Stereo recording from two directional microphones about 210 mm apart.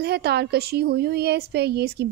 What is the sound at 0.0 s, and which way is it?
Speech, 50° right (ahead or behind).